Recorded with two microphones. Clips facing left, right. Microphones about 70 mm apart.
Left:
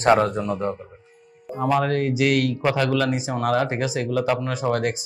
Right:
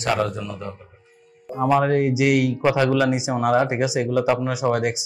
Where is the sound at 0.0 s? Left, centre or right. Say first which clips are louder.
Left 5 dB; left.